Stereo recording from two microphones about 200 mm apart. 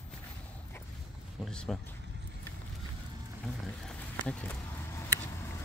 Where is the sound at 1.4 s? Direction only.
5° left (ahead or behind).